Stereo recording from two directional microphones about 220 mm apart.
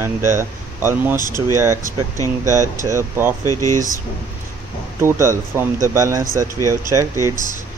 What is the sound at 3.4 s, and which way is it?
Speech, 15° left (ahead or behind).